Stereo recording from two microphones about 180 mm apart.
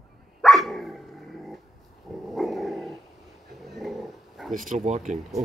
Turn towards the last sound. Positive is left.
turn(degrees=-40)  # may be behind; listen again after turning